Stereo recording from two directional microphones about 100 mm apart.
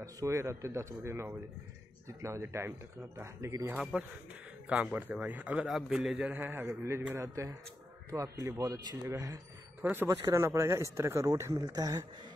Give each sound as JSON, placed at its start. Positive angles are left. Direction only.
{"t": 0.0, "sound": "speech", "side_deg": -30}
{"t": 3.9, "sound": "a man's voice", "side_deg": -10}
{"t": 5.7, "sound": "a man's voice", "side_deg": -5}
{"t": 6.2, "sound": "speech", "side_deg": -20}
{"t": 9.8, "sound": "speech", "side_deg": -15}
{"t": 10.2, "sound": "speech", "side_deg": -30}